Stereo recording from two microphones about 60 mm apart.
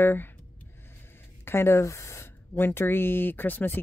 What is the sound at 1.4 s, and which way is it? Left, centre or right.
Speech, left.